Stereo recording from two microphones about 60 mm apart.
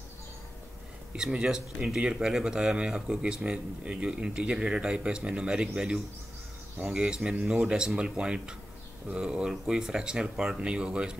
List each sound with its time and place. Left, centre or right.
1.1 s speech: centre